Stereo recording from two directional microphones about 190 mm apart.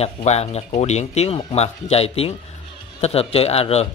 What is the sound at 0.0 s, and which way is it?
Speech, 35° left (ahead or behind).